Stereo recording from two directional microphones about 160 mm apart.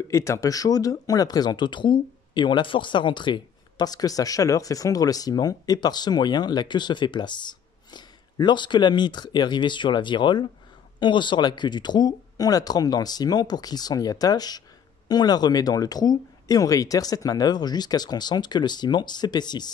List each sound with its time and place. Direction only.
0.1 s speech: 20° left (ahead or behind)